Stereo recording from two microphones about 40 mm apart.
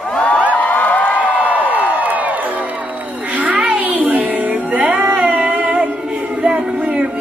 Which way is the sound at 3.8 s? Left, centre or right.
Right.